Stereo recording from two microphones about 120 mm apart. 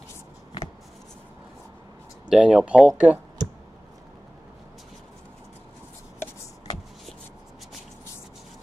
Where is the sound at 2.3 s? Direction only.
5° right (ahead or behind).